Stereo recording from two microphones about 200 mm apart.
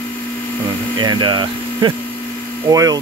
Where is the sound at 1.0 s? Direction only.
20° right (ahead or behind).